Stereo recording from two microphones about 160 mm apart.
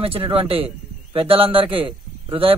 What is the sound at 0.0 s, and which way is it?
A man's voice, 35° right (ahead or behind).